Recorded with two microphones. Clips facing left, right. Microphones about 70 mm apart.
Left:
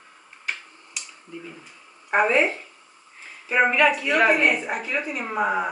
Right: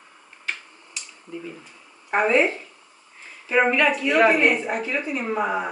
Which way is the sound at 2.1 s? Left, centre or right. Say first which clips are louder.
Even; centre.